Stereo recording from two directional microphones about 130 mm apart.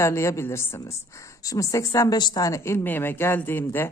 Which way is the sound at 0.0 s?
20° left (ahead or behind).